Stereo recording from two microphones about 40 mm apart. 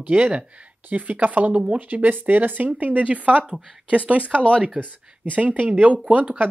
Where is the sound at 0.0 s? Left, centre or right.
Right.